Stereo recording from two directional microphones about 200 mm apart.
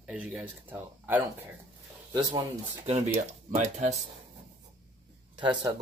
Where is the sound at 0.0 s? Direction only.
5° right (ahead or behind).